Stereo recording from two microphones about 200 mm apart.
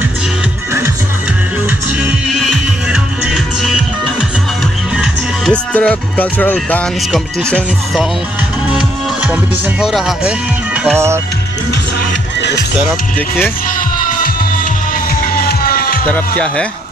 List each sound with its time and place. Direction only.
2.0 s music: centre (ahead or behind)
4.9 s speech: centre (ahead or behind)
12.4 s music: 60° left (ahead or behind)
13.7 s music: 45° left (ahead or behind)
16.1 s speech: 5° left (ahead or behind)